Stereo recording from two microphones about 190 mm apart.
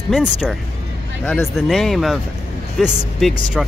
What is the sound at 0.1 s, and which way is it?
Speech, 5° right (ahead or behind).